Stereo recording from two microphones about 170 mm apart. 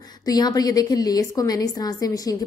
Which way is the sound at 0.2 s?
20° left (ahead or behind).